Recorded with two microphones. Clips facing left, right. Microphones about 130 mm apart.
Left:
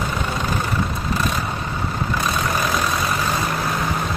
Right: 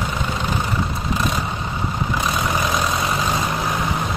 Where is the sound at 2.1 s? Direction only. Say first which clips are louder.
Even; 15° right (ahead or behind).